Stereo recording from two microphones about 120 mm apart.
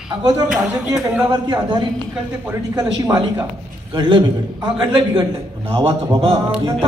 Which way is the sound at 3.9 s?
45° right (ahead or behind).